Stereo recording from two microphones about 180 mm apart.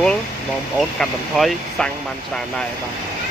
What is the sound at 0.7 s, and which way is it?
Speech, centre (ahead or behind).